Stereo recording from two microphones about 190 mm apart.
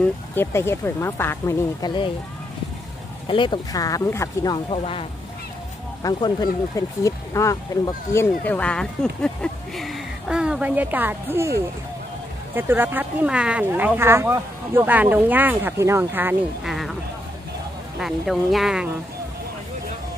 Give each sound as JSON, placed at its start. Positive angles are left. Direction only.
{"t": 0.0, "sound": "speech", "side_deg": 10}
{"t": 3.3, "sound": "speech", "side_deg": 25}
{"t": 4.6, "sound": "speech", "side_deg": 30}
{"t": 6.0, "sound": "speech", "side_deg": 20}
{"t": 12.5, "sound": "speech", "side_deg": -10}
{"t": 17.9, "sound": "speech", "side_deg": 0}